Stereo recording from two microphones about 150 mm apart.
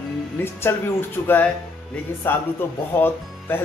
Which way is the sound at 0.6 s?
15° left (ahead or behind).